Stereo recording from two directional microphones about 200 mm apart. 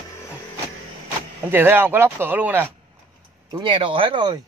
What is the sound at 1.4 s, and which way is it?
Speech, 10° right (ahead or behind).